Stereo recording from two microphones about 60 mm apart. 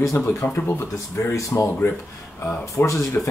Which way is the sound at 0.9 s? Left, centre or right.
Left.